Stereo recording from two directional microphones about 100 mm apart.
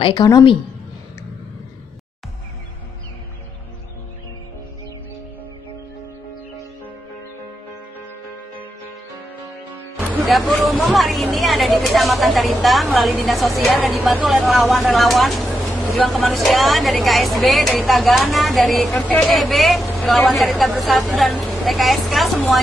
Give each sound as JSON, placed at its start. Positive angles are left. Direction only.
{"t": 0.1, "sound": "a woman's voice", "side_deg": 40}
{"t": 10.2, "sound": "speech", "side_deg": 0}
{"t": 18.9, "sound": "speech", "side_deg": 15}
{"t": 19.2, "sound": "speech", "side_deg": 0}